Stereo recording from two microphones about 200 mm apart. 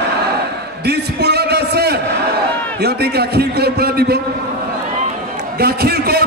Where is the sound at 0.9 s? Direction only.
55° right (ahead or behind).